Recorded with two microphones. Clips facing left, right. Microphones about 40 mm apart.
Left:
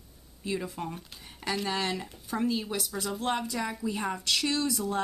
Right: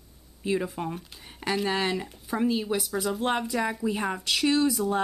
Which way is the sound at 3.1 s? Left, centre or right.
Centre.